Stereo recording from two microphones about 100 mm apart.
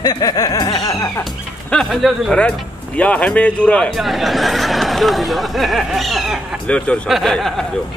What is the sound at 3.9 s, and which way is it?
Speech, centre (ahead or behind).